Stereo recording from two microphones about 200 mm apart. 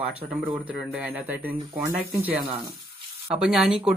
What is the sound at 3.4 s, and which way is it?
Speech, 5° right (ahead or behind).